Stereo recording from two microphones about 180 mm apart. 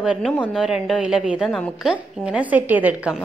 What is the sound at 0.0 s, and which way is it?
A woman's voice, 5° right (ahead or behind).